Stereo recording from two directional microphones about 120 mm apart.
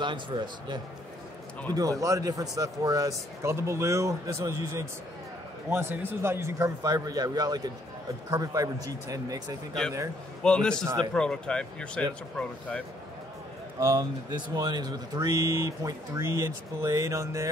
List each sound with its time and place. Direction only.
0.0 s a man's voice: 40° right (ahead or behind)
10.4 s speech: 5° left (ahead or behind)
13.7 s a man's voice: 25° right (ahead or behind)
14.5 s speech: 35° right (ahead or behind)